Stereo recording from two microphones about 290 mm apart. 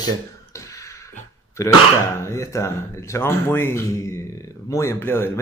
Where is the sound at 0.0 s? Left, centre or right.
Centre.